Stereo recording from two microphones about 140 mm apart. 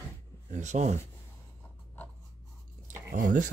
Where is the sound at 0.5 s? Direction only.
60° right (ahead or behind).